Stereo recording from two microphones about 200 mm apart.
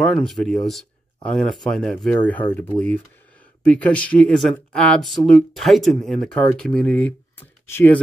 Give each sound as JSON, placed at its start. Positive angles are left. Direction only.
{"t": 0.0, "sound": "speech", "side_deg": 5}